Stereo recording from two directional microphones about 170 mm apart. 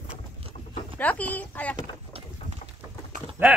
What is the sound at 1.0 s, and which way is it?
Speech, 10° left (ahead or behind).